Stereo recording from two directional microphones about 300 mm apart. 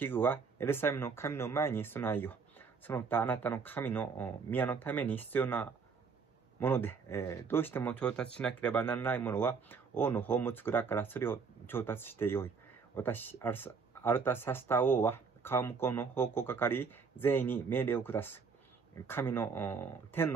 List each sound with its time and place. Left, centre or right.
0.0 s speech: centre